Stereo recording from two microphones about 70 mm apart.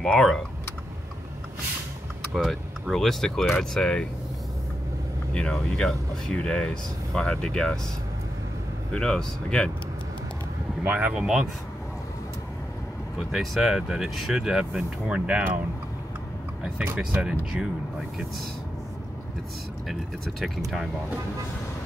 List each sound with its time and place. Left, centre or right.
0.0 s speech: centre
2.3 s speech: centre
5.3 s speech: centre
8.9 s speech: centre
10.8 s speech: right
11.1 s speech: centre
13.3 s speech: centre
17.1 s speech: centre
19.9 s speech: centre